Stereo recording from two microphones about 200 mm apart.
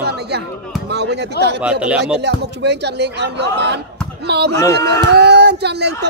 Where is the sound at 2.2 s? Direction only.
60° right (ahead or behind).